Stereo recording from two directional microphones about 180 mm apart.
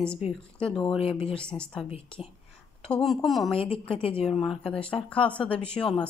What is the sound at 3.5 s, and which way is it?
Speech, 30° left (ahead or behind).